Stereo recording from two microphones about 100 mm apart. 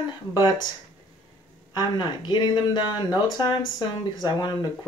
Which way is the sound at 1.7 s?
45° left (ahead or behind).